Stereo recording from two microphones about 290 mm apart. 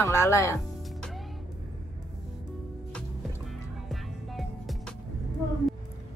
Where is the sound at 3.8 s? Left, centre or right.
Centre.